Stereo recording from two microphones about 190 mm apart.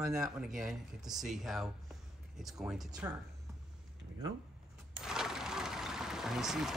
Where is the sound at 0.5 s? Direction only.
Centre (ahead or behind).